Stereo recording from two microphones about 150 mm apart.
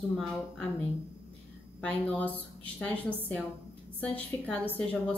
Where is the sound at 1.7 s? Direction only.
10° left (ahead or behind).